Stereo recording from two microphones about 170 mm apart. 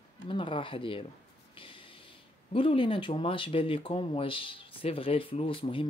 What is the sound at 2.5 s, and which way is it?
Speech, 30° left (ahead or behind).